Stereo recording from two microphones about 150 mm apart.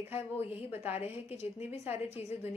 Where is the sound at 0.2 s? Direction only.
40° left (ahead or behind).